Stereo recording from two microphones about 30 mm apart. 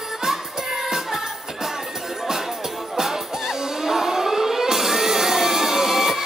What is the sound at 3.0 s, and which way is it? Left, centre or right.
Music, centre.